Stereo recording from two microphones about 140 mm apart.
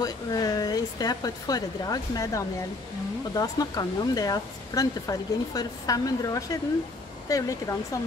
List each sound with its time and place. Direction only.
0.0 s speech: 25° left (ahead or behind)